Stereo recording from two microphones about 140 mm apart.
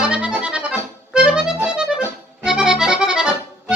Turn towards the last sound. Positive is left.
turn(degrees=-5)  # may be behind; listen again after turning